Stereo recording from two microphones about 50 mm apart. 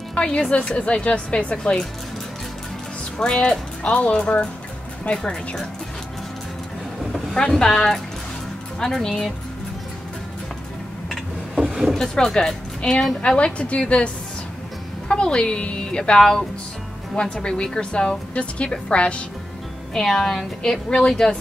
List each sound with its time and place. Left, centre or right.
0.1 s a woman's voice: centre
3.2 s a woman's voice: centre
7.3 s a woman's voice: centre
11.1 s a sound: centre
12.4 s a woman's voice: centre
19.9 s a woman's voice: centre